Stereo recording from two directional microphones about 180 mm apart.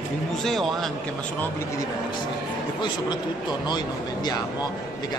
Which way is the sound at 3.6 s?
25° left (ahead or behind).